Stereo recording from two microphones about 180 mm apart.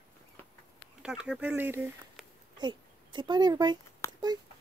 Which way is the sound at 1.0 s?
5° right (ahead or behind).